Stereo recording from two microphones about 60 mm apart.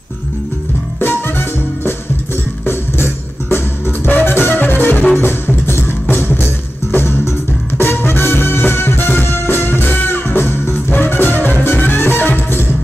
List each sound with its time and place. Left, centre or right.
0.9 s music: left